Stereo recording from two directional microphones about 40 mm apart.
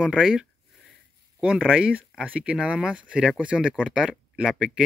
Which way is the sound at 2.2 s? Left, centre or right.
Right.